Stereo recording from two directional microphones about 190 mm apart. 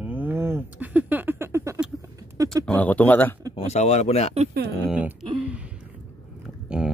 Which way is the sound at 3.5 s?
35° left (ahead or behind).